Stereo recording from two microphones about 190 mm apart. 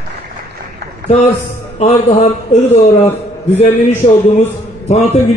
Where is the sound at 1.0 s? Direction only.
40° left (ahead or behind).